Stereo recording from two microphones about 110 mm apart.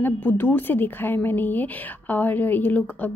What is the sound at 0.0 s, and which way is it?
A woman's voice, 15° left (ahead or behind).